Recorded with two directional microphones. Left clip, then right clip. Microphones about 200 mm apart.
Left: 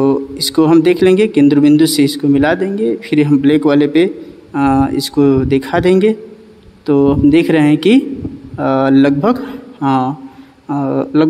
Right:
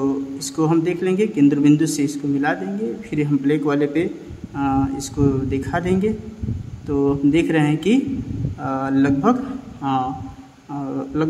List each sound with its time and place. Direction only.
0.0 s speech: 35° left (ahead or behind)